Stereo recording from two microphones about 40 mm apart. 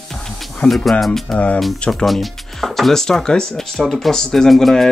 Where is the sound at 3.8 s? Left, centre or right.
Centre.